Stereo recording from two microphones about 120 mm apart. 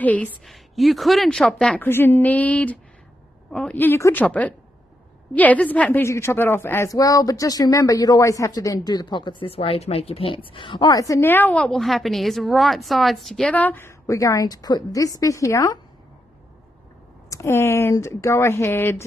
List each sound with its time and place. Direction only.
0.0 s a woman's voice: 15° left (ahead or behind)
0.5 s a woman's voice: centre (ahead or behind)
1.8 s a woman's voice: 20° left (ahead or behind); by 10.9 s 45° left (ahead or behind)
10.9 s a woman's voice: 30° left (ahead or behind)
17.3 s speech: 25° left (ahead or behind)